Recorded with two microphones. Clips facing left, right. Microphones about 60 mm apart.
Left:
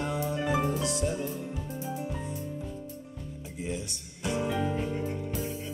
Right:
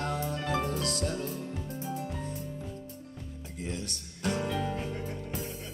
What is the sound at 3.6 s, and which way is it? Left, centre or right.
Music, centre.